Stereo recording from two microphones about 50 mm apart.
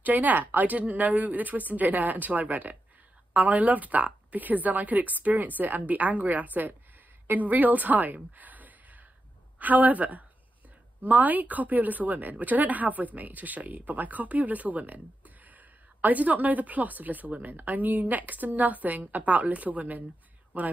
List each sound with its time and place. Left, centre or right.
0.0 s a woman's voice: right